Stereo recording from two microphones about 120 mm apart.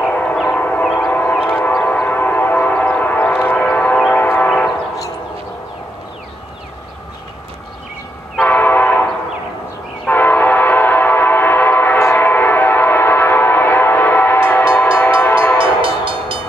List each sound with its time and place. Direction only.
0.1 s train: 10° left (ahead or behind)
8.4 s train horn: 15° left (ahead or behind)
10.0 s train: 15° left (ahead or behind)
15.5 s train: 45° right (ahead or behind)